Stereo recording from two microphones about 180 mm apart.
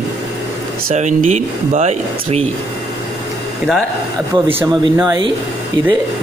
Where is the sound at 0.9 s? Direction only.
40° right (ahead or behind).